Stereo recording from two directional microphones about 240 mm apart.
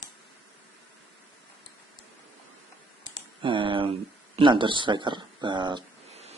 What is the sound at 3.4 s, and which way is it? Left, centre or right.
Speech, right.